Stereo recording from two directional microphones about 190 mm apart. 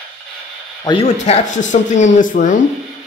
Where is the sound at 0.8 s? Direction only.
35° left (ahead or behind).